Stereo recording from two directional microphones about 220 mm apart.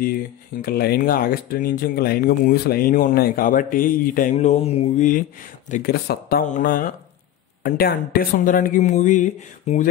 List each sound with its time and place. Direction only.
0.0 s speech: 40° left (ahead or behind)